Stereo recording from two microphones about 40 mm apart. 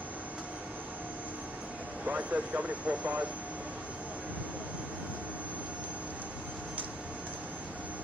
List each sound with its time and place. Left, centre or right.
2.0 s speech: right